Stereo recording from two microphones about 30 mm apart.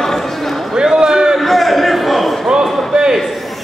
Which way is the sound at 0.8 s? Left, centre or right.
Right.